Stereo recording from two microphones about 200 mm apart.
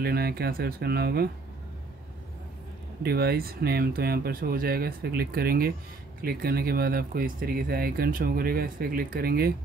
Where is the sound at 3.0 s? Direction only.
50° right (ahead or behind).